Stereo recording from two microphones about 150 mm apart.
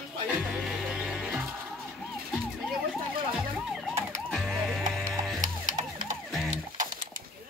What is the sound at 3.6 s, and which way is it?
Emergency vehicle, centre (ahead or behind).